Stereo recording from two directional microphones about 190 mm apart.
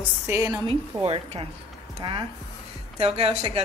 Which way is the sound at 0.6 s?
30° right (ahead or behind).